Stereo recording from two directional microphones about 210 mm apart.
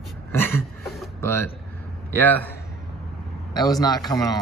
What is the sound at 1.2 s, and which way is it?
Speech, 10° left (ahead or behind).